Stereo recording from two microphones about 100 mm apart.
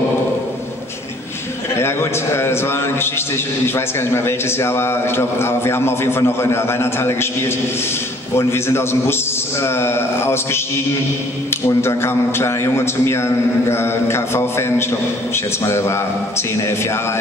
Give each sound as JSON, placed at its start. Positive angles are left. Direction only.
{"t": 1.8, "sound": "a man's voice", "side_deg": 25}